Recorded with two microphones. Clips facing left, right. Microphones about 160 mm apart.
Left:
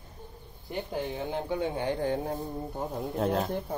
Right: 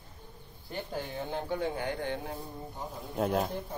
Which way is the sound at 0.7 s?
20° left (ahead or behind).